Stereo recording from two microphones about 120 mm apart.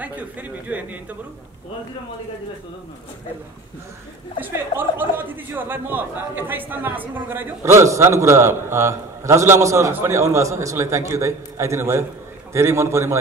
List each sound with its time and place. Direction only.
0.0 s speech: 10° right (ahead or behind)
4.4 s speech: 15° right (ahead or behind)